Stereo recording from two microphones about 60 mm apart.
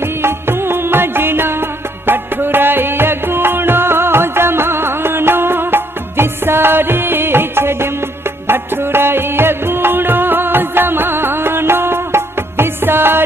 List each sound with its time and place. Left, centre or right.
0.2 s music: right